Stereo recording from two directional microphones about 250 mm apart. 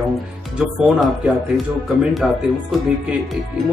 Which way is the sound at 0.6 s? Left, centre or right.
Centre.